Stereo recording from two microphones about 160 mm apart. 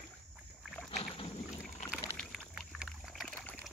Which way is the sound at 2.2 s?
5° left (ahead or behind).